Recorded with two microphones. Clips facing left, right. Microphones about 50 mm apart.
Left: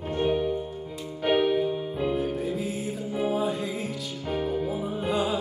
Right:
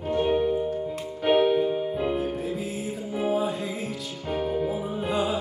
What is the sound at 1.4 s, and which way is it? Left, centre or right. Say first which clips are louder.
Music: right 3 dB; centre.